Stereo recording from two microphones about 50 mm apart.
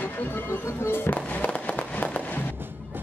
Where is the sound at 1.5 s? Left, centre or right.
Left.